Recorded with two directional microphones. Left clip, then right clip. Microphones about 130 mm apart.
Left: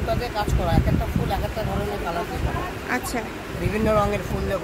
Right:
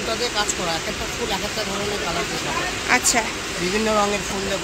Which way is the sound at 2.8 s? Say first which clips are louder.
Right 9 dB; 5° left (ahead or behind).